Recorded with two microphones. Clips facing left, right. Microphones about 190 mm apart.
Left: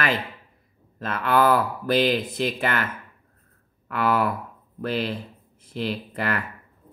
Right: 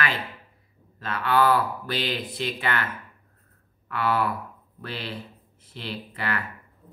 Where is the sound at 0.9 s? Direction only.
50° left (ahead or behind).